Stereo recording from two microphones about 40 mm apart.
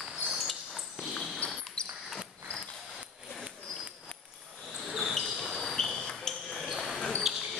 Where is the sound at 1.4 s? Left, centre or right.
Left.